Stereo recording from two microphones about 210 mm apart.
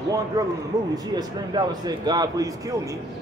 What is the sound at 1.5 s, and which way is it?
Speech, 20° right (ahead or behind).